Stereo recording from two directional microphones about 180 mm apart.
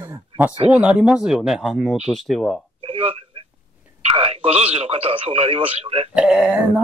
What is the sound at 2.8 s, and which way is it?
Telephone, 30° right (ahead or behind).